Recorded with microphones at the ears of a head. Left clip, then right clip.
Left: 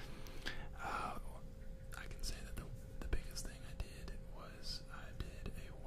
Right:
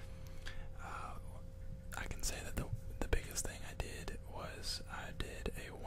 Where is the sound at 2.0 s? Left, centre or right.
Right.